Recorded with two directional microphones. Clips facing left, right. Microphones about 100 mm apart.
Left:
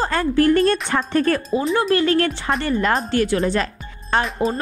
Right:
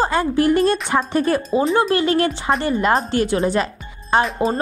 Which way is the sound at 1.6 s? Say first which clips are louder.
Right 5 dB; 35° right (ahead or behind).